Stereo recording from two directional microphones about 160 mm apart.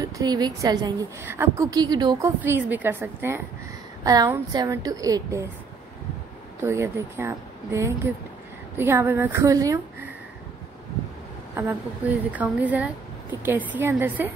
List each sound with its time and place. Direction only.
0.0 s a woman's voice: 25° right (ahead or behind)
6.6 s a woman's voice: 15° right (ahead or behind)
11.5 s a woman's voice: 10° right (ahead or behind)